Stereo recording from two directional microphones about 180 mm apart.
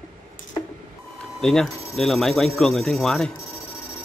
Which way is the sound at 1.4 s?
5° left (ahead or behind).